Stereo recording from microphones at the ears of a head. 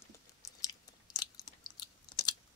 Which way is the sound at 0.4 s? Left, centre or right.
Left.